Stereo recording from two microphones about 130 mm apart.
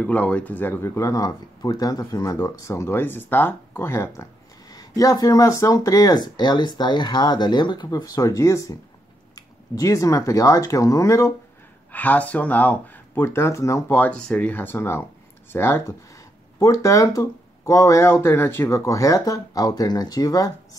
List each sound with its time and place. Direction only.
0.0 s speech: 10° left (ahead or behind)
11.9 s speech: 10° left (ahead or behind); by 20.5 s 30° left (ahead or behind)